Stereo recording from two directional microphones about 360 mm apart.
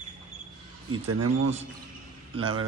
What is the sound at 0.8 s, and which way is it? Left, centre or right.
Speech, right.